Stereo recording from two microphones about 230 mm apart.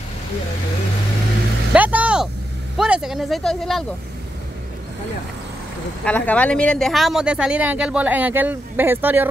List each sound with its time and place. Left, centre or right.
1.7 s vehicle: centre
2.8 s speech: centre
6.0 s speech: centre